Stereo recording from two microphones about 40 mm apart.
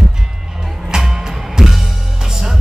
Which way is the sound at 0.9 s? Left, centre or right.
Centre.